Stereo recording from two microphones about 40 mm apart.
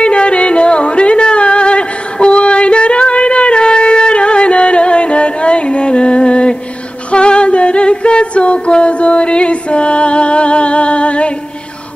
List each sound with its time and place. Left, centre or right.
0.0 s music: left